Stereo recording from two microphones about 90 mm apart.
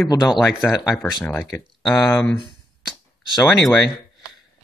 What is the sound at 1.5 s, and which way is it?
Speech, 5° left (ahead or behind).